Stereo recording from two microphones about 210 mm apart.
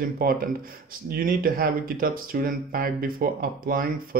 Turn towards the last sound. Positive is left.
turn(degrees=-45)  # may be behind; listen again after turning